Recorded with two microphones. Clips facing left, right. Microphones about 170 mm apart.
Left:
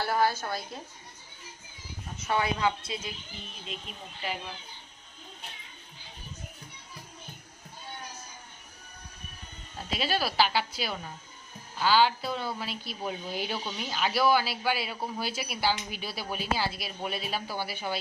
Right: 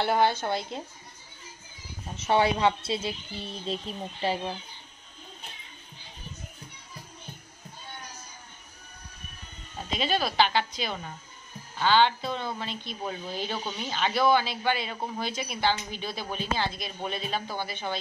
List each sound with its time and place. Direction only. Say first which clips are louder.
0.0 s a woman's voice: right 3 dB; 25° right (ahead or behind)
2.2 s a woman's voice: right 5 dB; 30° right (ahead or behind)
9.8 s a woman's voice: right 2 dB; 5° left (ahead or behind)